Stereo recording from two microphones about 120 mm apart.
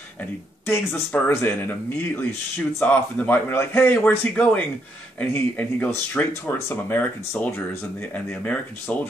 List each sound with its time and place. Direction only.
0.2 s speech: 20° left (ahead or behind)